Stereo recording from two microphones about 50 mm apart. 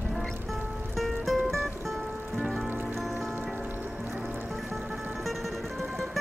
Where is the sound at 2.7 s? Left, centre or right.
Right.